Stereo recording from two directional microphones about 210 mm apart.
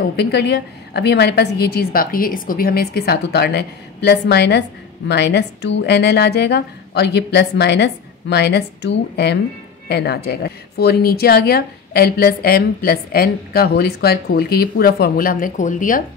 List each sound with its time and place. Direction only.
0.1 s a woman's voice: 55° left (ahead or behind); by 16.0 s 40° left (ahead or behind)